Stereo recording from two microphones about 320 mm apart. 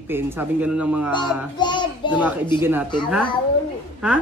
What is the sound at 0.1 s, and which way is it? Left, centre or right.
A woman's voice, centre.